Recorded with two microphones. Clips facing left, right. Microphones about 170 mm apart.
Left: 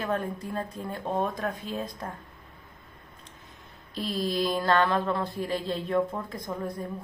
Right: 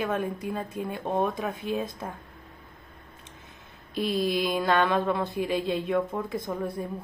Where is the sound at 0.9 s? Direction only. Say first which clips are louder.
Right 2 dB; 20° right (ahead or behind).